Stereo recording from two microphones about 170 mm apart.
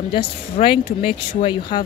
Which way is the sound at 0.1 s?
30° left (ahead or behind).